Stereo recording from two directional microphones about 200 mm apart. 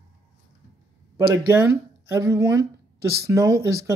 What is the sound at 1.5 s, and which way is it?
Speech, 10° right (ahead or behind).